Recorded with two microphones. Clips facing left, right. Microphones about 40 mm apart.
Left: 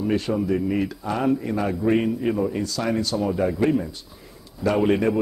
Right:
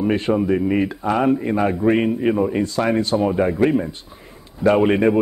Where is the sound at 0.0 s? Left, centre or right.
Right.